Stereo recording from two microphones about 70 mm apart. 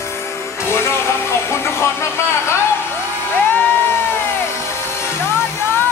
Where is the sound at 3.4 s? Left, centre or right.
Left.